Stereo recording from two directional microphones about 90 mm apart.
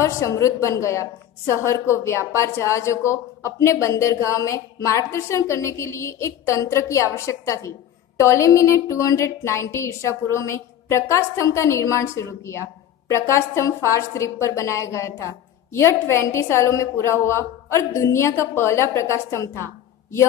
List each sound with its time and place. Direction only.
0.0 s a woman's voice: 35° left (ahead or behind)